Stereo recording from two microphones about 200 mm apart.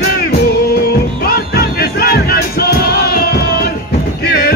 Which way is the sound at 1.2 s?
50° left (ahead or behind).